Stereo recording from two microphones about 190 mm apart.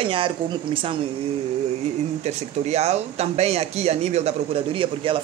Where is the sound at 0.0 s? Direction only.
30° right (ahead or behind).